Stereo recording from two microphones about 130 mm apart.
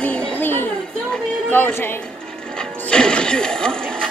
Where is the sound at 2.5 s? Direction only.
5° left (ahead or behind).